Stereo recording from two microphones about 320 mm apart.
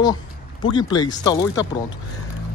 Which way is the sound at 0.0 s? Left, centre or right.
Centre.